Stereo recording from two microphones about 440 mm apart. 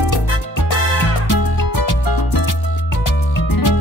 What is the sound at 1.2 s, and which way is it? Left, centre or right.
Music, left.